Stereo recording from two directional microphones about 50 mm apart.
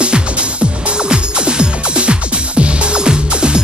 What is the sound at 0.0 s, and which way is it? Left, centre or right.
Music, right.